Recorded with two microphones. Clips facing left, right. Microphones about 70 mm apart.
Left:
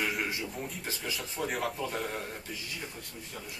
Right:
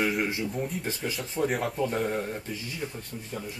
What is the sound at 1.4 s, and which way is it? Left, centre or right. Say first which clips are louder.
Speech: right 6 dB; right.